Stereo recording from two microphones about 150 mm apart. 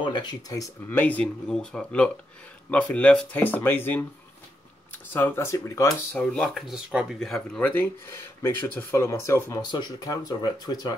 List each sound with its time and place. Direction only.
0.0 s speech: 30° left (ahead or behind)
0.8 s speech: 10° left (ahead or behind)
6.1 s speech: 5° left (ahead or behind); by 11.0 s 25° left (ahead or behind)